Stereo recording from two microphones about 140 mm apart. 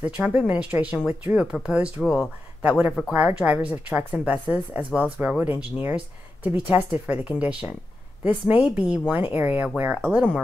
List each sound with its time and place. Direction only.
0.0 s speech: 10° right (ahead or behind)